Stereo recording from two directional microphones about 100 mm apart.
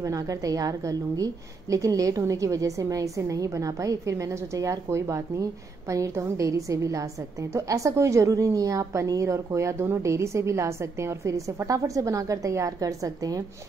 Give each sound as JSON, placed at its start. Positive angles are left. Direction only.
{"t": 0.0, "sound": "a woman's voice", "side_deg": -35}